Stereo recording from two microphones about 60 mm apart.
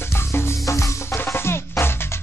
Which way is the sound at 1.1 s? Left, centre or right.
Left.